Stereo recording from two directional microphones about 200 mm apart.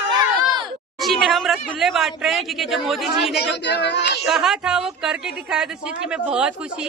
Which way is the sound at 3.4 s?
60° left (ahead or behind).